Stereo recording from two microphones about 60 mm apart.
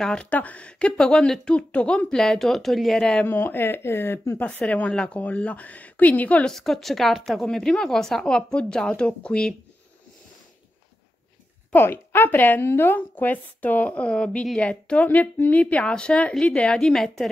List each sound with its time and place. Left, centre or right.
0.0 s speech: centre
2.2 s speech: centre
3.3 s speech: left
4.6 s speech: left
6.4 s speech: centre
11.7 s speech: left
15.0 s speech: left
15.6 s speech: centre